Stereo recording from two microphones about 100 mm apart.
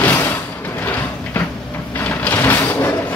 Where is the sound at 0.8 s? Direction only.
20° left (ahead or behind).